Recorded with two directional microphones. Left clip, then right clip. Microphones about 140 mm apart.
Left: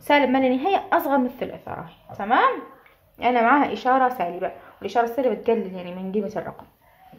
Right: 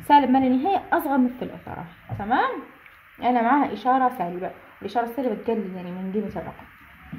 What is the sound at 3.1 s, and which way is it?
A woman's voice, 10° right (ahead or behind).